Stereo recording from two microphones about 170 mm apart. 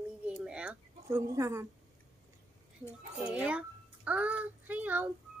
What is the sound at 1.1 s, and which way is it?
Speech, 20° right (ahead or behind).